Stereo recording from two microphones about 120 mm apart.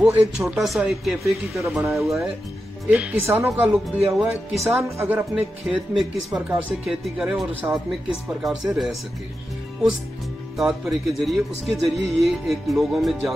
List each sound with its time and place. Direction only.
0.0 s speech: 10° right (ahead or behind)
2.9 s speech: 15° right (ahead or behind)
4.6 s speech: 20° right (ahead or behind)
5.7 s speech: 10° right (ahead or behind)
10.6 s speech: centre (ahead or behind)